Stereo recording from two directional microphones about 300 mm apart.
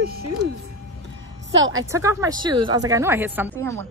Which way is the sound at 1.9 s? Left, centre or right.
Centre.